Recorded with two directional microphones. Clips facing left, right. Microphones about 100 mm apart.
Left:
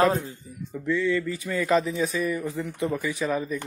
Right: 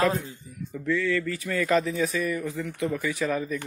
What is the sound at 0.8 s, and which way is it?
A man's voice, 20° left (ahead or behind).